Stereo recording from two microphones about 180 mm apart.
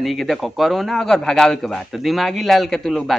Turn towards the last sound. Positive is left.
turn(degrees=0)  # may be behind; listen again after turning